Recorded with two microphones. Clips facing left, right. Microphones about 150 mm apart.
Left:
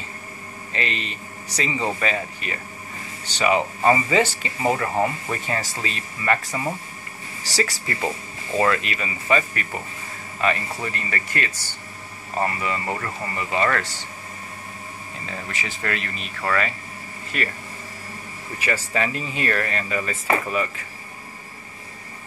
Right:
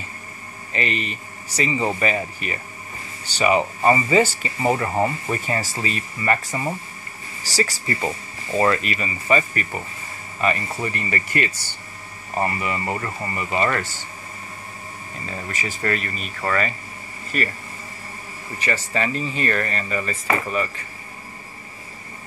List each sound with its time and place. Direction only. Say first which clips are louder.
0.7 s speech: right 3 dB; 5° right (ahead or behind)
15.2 s speech: right 2 dB; 5° right (ahead or behind)
18.6 s speech: even; 5° left (ahead or behind)